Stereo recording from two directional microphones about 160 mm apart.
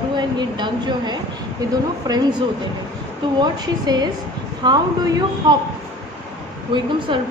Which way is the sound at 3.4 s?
25° right (ahead or behind).